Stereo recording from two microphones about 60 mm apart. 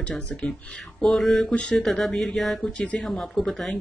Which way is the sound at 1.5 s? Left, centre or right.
Centre.